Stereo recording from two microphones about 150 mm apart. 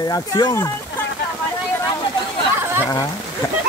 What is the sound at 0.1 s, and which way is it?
Speech, 25° left (ahead or behind).